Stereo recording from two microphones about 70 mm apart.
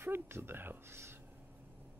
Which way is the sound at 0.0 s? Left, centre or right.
Right.